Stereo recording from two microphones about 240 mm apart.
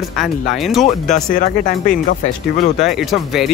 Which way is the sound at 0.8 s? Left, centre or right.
Left.